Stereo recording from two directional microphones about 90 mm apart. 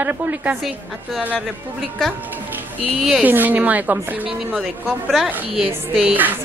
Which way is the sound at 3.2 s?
20° right (ahead or behind).